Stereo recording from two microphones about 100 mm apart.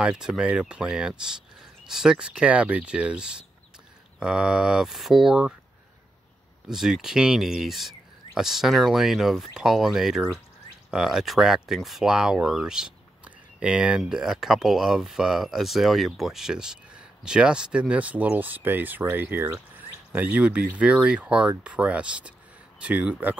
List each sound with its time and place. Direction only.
0.0 s speech: 5° right (ahead or behind)
6.7 s speech: 5° right (ahead or behind)